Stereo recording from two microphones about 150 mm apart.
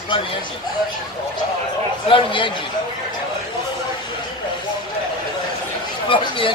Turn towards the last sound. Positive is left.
turn(degrees=35)  # may be behind; listen again after turning